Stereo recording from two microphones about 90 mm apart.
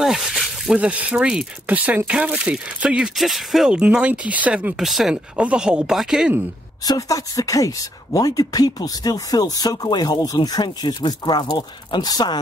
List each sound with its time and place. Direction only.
0.0 s a sound: 5° right (ahead or behind)
0.7 s speech: 15° right (ahead or behind)
4.7 s speech: 5° right (ahead or behind)
5.1 s speech: 15° right (ahead or behind)
6.8 s speech: 40° left (ahead or behind)